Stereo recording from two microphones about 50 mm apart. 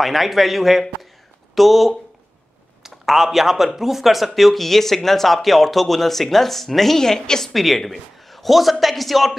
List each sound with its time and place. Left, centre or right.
0.0 s speech: centre